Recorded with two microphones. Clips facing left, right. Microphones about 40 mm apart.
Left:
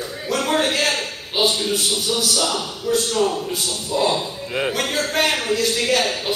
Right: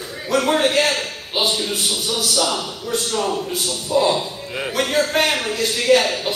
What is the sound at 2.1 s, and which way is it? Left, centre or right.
Speech, right.